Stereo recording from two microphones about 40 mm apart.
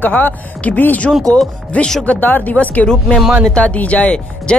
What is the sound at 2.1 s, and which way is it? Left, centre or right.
Speech, left.